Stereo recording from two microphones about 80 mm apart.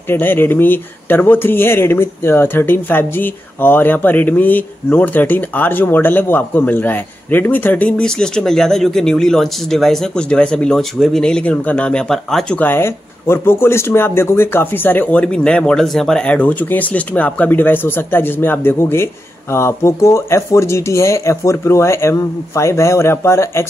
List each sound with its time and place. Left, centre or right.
0.1 s speech: left; by 12.5 s centre
12.5 s speech: left